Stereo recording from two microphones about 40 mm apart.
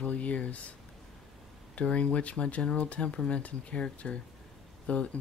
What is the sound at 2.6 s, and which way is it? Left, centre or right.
Speech, centre.